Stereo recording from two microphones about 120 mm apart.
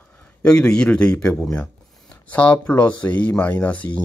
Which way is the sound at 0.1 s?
10° left (ahead or behind).